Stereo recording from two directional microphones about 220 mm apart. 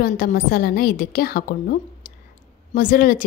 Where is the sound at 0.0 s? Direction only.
40° left (ahead or behind).